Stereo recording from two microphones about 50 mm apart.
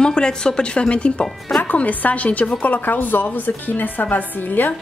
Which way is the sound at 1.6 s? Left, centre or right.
Left.